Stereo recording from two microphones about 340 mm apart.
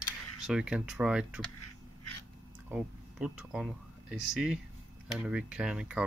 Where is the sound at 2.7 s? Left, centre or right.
Centre.